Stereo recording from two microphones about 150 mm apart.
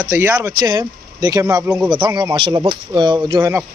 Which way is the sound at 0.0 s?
20° right (ahead or behind).